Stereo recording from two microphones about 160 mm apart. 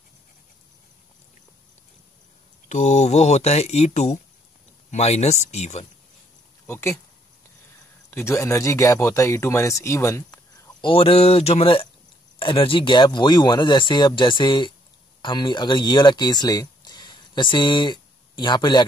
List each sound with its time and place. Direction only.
2.7 s speech: 50° left (ahead or behind)
6.7 s speech: 15° left (ahead or behind)
8.1 s speech: 15° left (ahead or behind)
10.8 s speech: 35° left (ahead or behind)